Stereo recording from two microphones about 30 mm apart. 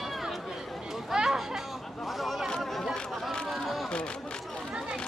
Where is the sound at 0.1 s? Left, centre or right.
Centre.